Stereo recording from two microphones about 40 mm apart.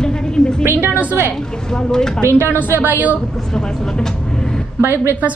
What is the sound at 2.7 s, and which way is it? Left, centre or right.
Speech, right.